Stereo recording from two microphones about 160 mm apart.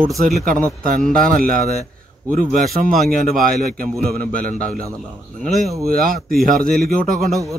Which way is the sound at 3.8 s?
70° right (ahead or behind).